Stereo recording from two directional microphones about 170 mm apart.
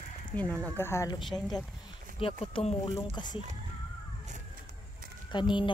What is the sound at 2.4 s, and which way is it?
Speech, 35° left (ahead or behind).